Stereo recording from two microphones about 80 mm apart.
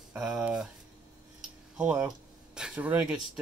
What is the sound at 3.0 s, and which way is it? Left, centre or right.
Speech, centre.